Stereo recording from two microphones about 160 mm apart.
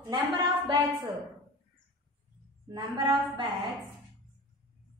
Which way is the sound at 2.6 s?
25° right (ahead or behind).